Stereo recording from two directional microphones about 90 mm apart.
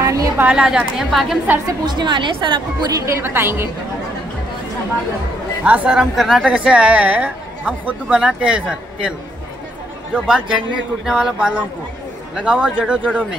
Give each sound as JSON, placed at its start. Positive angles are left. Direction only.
{"t": 0.0, "sound": "a sound", "side_deg": -40}
{"t": 0.4, "sound": "a woman's voice", "side_deg": -10}
{"t": 1.9, "sound": "a woman's voice", "side_deg": -55}
{"t": 2.9, "sound": "a woman's voice", "side_deg": -35}
{"t": 5.6, "sound": "a woman's voice", "side_deg": -15}
{"t": 10.1, "sound": "a woman's voice", "side_deg": -10}